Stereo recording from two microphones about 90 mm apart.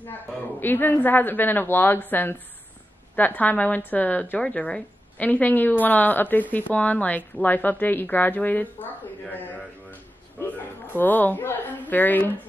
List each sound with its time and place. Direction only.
0.6 s a woman's voice: 20° left (ahead or behind)
10.4 s a woman's voice: 25° left (ahead or behind)